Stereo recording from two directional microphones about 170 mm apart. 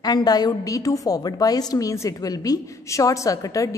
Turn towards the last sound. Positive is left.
turn(degrees=20)  # may be behind; listen again after turning